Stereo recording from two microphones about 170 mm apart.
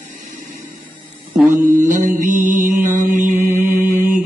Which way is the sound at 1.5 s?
50° right (ahead or behind).